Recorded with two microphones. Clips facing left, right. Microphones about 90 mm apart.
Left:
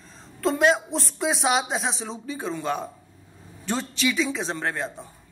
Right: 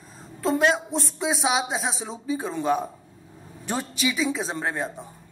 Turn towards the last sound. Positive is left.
turn(degrees=-15)  # may be behind; listen again after turning